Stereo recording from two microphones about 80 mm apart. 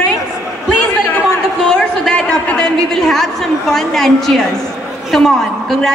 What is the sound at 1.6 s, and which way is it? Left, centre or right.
A woman's voice, centre.